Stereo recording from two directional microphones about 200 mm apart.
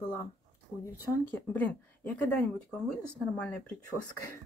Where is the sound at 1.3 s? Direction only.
10° left (ahead or behind).